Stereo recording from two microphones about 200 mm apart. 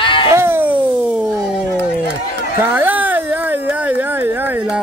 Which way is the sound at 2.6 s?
10° right (ahead or behind).